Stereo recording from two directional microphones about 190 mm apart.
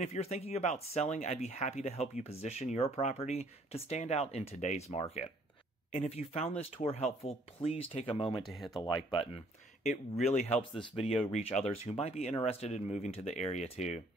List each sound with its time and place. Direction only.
0.0 s speech: 35° left (ahead or behind)
8.4 s speech: centre (ahead or behind)
8.8 s speech: 25° left (ahead or behind)